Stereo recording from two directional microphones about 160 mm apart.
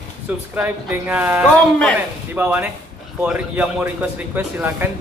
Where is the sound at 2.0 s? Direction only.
10° right (ahead or behind).